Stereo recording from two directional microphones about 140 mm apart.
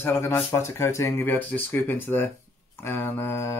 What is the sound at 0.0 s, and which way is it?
Speech, 15° left (ahead or behind).